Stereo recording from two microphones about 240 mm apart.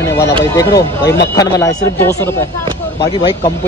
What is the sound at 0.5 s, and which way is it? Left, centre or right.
A man's voice, centre.